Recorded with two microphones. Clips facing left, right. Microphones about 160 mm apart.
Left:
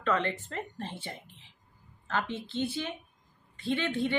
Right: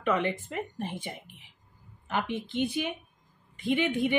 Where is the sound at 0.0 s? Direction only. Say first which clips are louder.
Right 2 dB; 15° right (ahead or behind).